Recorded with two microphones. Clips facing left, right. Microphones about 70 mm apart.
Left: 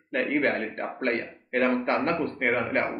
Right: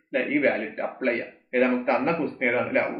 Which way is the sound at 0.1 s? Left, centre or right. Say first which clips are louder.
Right 2 dB; centre.